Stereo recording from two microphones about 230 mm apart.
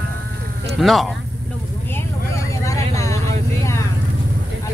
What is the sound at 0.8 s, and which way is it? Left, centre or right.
Speech, centre.